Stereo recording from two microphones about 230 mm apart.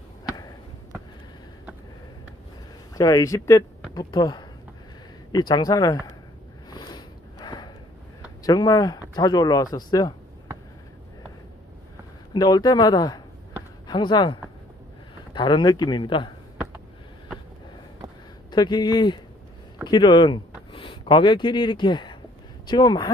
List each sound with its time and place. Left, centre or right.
2.9 s speech: centre
6.7 s a sound: centre
8.5 s speech: centre
12.4 s speech: centre
18.5 s speech: centre